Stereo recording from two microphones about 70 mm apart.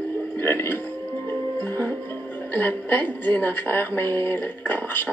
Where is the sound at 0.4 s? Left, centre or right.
Left.